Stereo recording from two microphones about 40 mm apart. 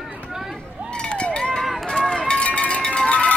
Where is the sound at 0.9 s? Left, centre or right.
Left.